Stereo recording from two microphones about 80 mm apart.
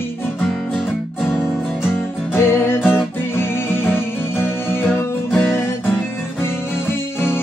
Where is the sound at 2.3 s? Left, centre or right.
Left.